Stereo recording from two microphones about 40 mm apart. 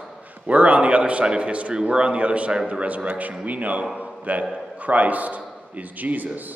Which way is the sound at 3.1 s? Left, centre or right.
Right.